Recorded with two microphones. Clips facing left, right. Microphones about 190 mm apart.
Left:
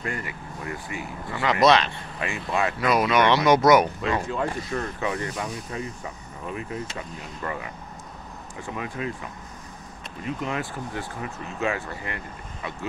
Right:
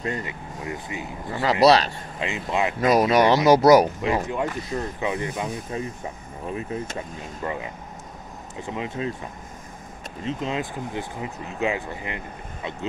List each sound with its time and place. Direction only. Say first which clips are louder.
0.0 s speech: right 3 dB; 20° right (ahead or behind)
1.3 s speech: right 2 dB; 35° right (ahead or behind)
2.1 s speech: right 1 dB; 20° right (ahead or behind)
2.9 s speech: right 3 dB; 40° right (ahead or behind)
4.0 s speech: right 2 dB; 20° right (ahead or behind)
10.2 s speech: right 2 dB; 20° right (ahead or behind)